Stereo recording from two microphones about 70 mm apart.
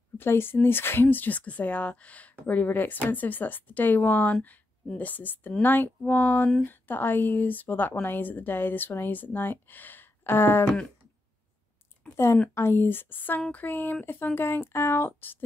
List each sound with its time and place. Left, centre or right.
0.2 s a woman's voice: left
12.0 s a sound: left
12.5 s a woman's voice: left